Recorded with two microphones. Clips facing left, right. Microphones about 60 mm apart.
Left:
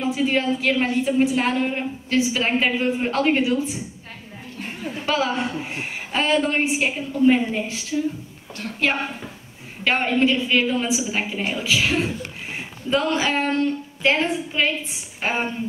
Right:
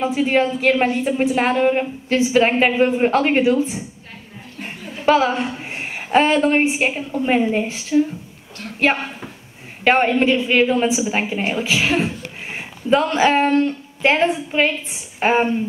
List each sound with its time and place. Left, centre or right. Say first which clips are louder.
0.1 s a woman's voice: right 4 dB; right
5.0 s a woman's voice: right 7 dB; right
9.8 s a woman's voice: right 4 dB; right